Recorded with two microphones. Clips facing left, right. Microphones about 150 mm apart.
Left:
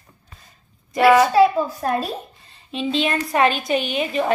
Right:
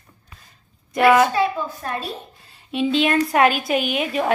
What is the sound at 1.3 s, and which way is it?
Speech, 35° left (ahead or behind).